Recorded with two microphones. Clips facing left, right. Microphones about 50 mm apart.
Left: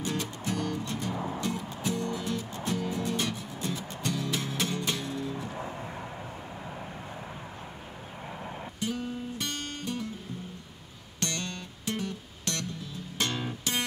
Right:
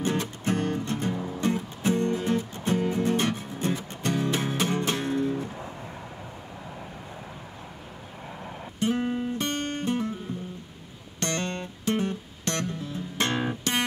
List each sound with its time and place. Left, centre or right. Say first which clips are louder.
0.0 s music: right 5 dB; right
1.1 s music: right 1 dB; centre
1.4 s music: right 6 dB; right
8.7 s music: right 8 dB; right
11.1 s music: right 5 dB; right